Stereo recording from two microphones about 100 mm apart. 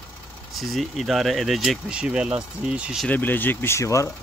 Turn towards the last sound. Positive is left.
turn(degrees=30)  # may be behind; listen again after turning